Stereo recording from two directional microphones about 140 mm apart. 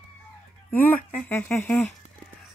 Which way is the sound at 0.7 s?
10° left (ahead or behind).